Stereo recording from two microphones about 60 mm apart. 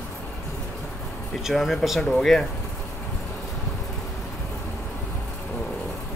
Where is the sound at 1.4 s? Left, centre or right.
Centre.